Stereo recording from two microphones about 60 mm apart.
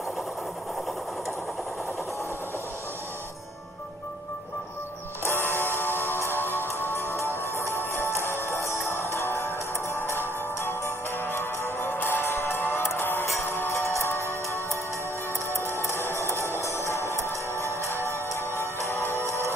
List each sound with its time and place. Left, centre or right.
5.2 s music: left
15.6 s music: left
17.6 s music: right
18.3 s music: left